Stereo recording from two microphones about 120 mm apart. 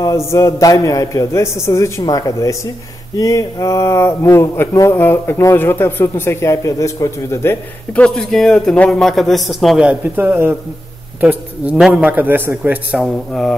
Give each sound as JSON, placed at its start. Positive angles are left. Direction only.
{"t": 0.3, "sound": "speech", "side_deg": 30}
{"t": 7.9, "sound": "a man's voice", "side_deg": 10}
{"t": 10.1, "sound": "a man's voice", "side_deg": -15}
{"t": 13.0, "sound": "a man's voice", "side_deg": 5}